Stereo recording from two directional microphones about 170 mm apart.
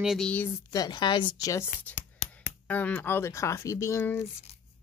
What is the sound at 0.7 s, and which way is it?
Speech, 25° left (ahead or behind).